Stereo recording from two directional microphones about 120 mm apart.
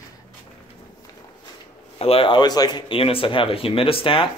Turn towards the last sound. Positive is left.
turn(degrees=50)  # may be behind; listen again after turning